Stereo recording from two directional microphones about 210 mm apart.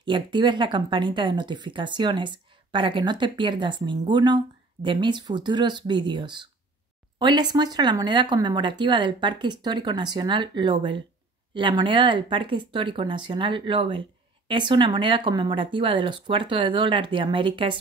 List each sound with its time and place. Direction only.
0.0 s speech: 20° right (ahead or behind)